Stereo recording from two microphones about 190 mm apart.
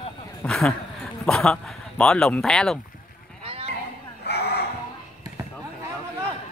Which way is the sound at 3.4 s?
30° right (ahead or behind).